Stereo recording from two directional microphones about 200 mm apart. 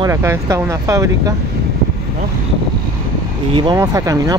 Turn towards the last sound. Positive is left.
turn(degrees=-15)  # may be behind; listen again after turning